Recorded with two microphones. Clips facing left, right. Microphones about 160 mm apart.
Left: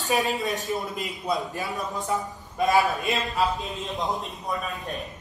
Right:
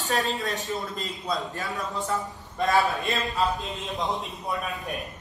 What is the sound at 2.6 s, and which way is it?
A man's voice, centre (ahead or behind).